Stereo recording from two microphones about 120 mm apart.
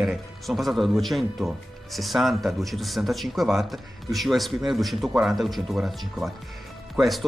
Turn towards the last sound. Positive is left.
turn(degrees=0)  # may be behind; listen again after turning